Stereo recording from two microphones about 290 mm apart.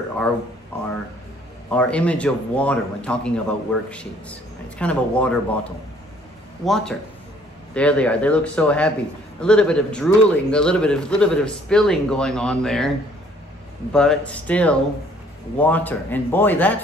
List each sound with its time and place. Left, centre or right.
0.7 s speech: centre
13.9 s speech: centre